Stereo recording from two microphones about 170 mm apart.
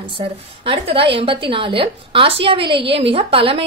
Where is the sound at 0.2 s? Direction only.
35° right (ahead or behind).